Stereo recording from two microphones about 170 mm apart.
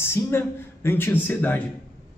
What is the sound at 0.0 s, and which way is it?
Speech, 15° left (ahead or behind).